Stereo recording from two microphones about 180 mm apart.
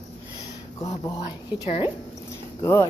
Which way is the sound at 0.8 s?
20° left (ahead or behind).